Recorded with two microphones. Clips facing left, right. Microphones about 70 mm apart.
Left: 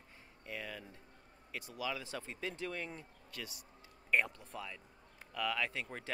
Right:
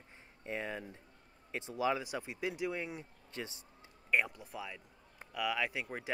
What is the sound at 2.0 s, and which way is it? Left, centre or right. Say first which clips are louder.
Speech: right 4 dB; centre.